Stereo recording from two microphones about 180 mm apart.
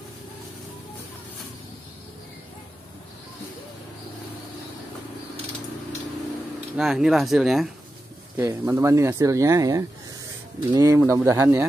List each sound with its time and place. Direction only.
6.8 s speech: centre (ahead or behind)
8.4 s speech: 15° right (ahead or behind)